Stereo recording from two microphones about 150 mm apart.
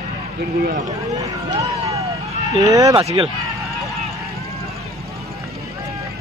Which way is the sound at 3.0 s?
40° right (ahead or behind).